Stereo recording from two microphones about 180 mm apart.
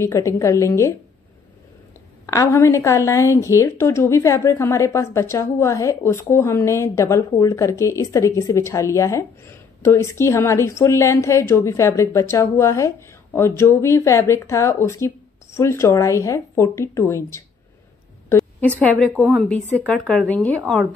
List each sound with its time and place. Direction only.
0.0 s a woman's voice: 15° left (ahead or behind)
2.2 s a woman's voice: 15° left (ahead or behind)